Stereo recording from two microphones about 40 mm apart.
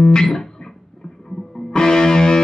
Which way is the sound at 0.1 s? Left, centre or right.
Centre.